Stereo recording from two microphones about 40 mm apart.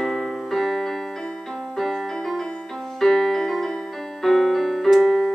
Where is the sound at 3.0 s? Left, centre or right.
Centre.